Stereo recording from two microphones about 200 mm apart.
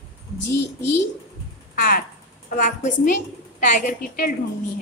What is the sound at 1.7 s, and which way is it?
A woman's voice, 45° left (ahead or behind).